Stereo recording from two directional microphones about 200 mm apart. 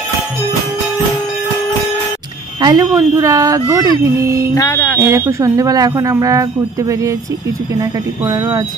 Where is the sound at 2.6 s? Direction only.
20° right (ahead or behind).